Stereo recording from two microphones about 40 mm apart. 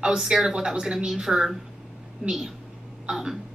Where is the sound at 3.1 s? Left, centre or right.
Right.